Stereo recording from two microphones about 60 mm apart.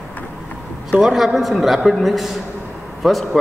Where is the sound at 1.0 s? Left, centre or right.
Centre.